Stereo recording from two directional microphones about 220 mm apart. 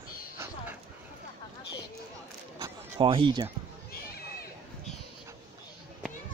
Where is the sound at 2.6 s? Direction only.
20° right (ahead or behind).